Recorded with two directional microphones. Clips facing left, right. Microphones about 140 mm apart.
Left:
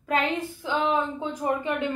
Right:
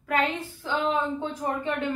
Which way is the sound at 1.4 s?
10° left (ahead or behind).